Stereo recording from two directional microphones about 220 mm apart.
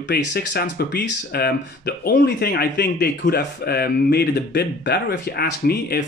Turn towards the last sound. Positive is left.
turn(degrees=45)  # may be behind; listen again after turning